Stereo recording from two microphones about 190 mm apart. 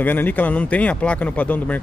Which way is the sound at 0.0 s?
10° left (ahead or behind).